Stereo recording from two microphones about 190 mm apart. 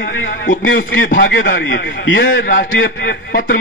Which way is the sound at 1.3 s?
65° left (ahead or behind).